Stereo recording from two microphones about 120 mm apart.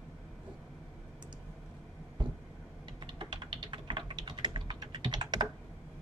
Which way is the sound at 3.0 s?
40° right (ahead or behind).